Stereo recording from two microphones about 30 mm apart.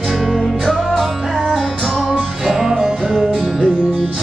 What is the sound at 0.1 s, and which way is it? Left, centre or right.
Music, centre.